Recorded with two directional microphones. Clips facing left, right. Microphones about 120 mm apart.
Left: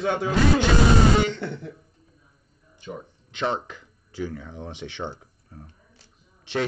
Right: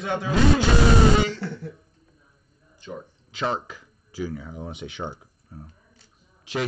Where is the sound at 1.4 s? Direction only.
20° left (ahead or behind).